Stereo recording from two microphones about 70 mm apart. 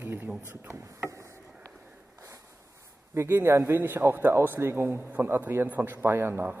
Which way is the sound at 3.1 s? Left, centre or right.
Right.